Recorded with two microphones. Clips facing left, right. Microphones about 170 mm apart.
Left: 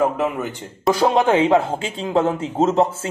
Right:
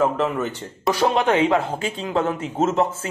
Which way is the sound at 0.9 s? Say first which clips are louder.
Left 2 dB; 35° left (ahead or behind).